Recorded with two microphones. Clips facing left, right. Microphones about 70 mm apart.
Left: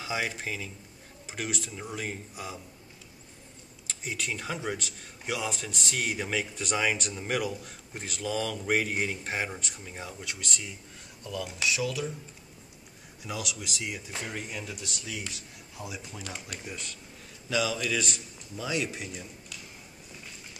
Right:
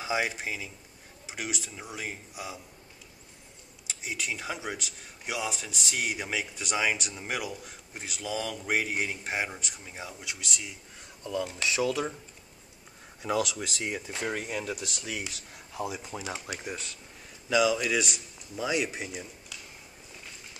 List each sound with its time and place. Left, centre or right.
0.0 s a man's voice: centre
3.8 s a man's voice: centre
11.2 s a man's voice: right
11.7 s speech: right
13.2 s speech: right
15.3 s speech: right
17.5 s a man's voice: right